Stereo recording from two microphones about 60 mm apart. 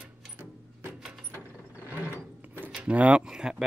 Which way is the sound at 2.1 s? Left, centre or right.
Right.